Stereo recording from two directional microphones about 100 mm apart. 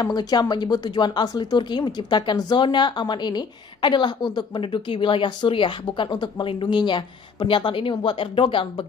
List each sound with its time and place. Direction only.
0.0 s speech: 40° left (ahead or behind); by 8.8 s 60° left (ahead or behind)